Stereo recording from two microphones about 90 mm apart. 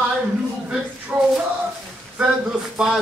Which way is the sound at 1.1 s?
15° right (ahead or behind).